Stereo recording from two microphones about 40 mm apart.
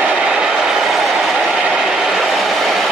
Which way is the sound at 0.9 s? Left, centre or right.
Centre.